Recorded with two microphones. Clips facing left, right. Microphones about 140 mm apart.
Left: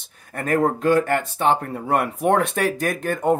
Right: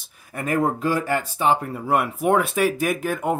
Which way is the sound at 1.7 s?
55° left (ahead or behind).